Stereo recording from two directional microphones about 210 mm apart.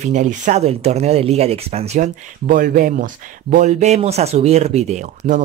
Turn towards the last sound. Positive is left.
turn(degrees=-35)  # may be behind; listen again after turning